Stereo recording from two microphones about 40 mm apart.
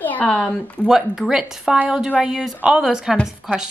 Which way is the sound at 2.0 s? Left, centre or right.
Right.